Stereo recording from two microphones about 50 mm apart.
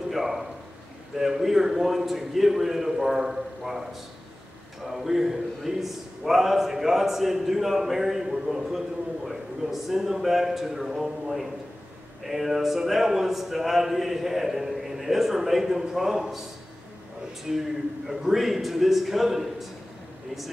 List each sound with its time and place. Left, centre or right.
0.1 s a sound: centre
1.1 s a man's voice: centre
17.5 s a man's voice: centre